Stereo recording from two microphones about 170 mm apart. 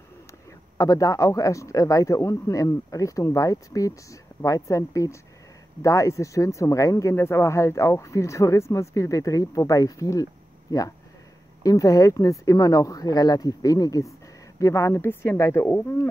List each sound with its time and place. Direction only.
0.7 s speech: 20° left (ahead or behind)
11.6 s speech: 20° left (ahead or behind)